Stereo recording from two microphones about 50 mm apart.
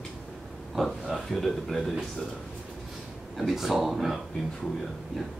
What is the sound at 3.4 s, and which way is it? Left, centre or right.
Speech, centre.